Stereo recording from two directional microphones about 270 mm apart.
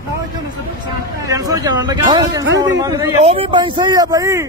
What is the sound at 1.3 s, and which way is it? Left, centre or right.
Speech, centre.